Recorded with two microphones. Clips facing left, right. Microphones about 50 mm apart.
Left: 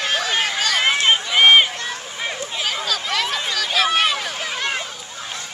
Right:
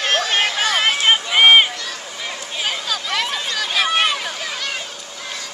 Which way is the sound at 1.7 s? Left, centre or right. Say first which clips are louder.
Left 1 dB; left.